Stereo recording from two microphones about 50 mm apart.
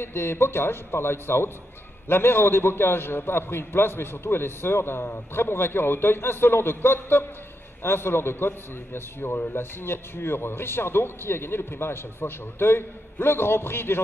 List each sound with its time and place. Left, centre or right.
0.0 s a man's voice: left